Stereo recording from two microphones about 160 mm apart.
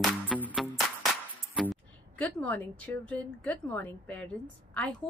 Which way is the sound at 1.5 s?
Centre (ahead or behind).